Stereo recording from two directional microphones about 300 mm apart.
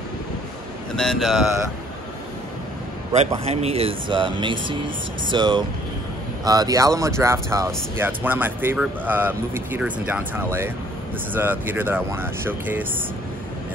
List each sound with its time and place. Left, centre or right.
0.9 s speech: centre
3.1 s speech: centre